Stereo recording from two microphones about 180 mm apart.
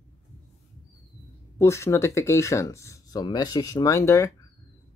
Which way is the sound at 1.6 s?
15° left (ahead or behind).